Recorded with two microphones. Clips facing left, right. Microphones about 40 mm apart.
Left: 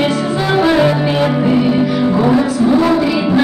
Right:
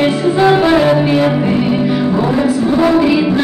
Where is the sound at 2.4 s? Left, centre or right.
Centre.